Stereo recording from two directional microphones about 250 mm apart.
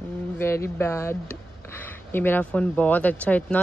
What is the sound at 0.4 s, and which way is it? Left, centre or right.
Speech, centre.